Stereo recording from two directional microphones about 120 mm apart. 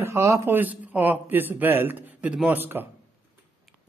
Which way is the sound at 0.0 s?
25° right (ahead or behind).